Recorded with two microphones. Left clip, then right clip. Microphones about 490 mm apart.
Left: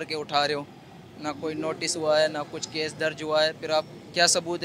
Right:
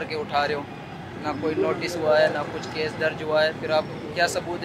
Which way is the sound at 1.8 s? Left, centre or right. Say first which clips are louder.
Right 1 dB; left.